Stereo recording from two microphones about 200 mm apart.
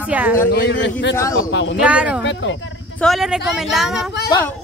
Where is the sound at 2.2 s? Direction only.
65° left (ahead or behind).